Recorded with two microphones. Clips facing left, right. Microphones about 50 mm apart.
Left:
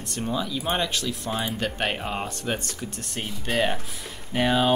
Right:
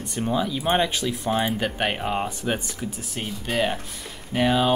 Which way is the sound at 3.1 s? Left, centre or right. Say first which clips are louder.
Even; centre.